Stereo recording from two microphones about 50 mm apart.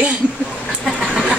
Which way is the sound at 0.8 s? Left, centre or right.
Centre.